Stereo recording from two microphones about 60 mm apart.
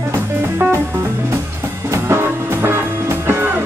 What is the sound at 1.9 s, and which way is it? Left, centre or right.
Music, right.